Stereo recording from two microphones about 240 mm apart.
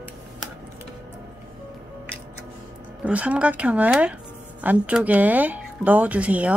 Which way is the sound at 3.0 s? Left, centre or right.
Centre.